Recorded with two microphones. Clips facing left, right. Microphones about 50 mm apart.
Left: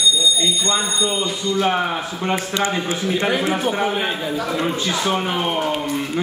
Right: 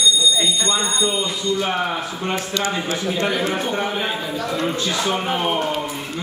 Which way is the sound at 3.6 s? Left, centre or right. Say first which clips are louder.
Left 2 dB; centre.